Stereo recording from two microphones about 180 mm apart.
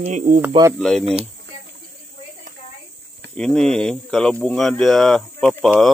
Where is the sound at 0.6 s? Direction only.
25° right (ahead or behind).